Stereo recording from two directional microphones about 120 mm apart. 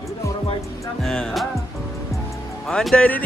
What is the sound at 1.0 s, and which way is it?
Speech, 5° left (ahead or behind).